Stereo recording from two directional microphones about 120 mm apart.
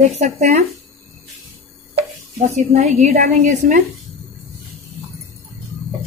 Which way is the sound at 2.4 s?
75° right (ahead or behind).